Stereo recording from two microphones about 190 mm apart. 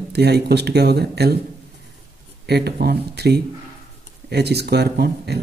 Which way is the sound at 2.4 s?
60° right (ahead or behind).